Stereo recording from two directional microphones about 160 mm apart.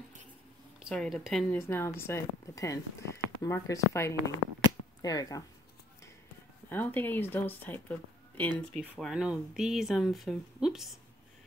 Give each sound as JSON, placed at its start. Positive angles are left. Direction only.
{"t": 0.7, "sound": "speech", "side_deg": 0}
{"t": 1.5, "sound": "speech", "side_deg": 15}
{"t": 6.7, "sound": "speech", "side_deg": 10}
{"t": 8.5, "sound": "speech", "side_deg": 0}